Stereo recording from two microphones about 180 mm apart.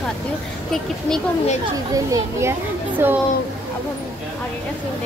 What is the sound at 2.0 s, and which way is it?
Speech, 20° right (ahead or behind).